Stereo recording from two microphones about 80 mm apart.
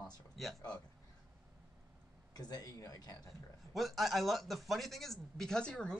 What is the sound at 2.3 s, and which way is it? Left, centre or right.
Speech, left.